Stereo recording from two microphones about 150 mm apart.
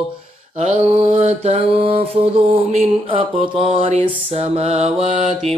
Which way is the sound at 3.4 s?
35° right (ahead or behind).